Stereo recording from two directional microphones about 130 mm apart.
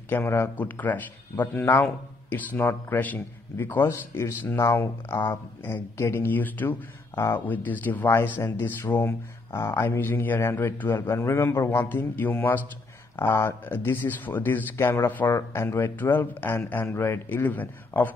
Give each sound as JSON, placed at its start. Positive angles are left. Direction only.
{"t": 0.1, "sound": "speech", "side_deg": 20}